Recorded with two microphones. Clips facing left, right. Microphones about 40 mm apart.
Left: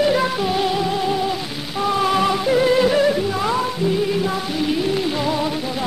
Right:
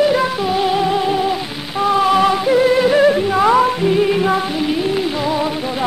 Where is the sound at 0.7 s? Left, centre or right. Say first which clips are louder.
Right 4 dB; right.